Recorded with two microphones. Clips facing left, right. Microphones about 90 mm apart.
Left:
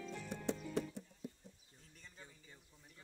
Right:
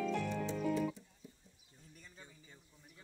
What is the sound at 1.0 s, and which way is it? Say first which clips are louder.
Music: left 7 dB; 70° left (ahead or behind).